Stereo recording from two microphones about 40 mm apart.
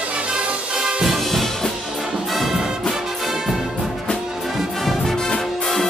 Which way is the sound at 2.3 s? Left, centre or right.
Centre.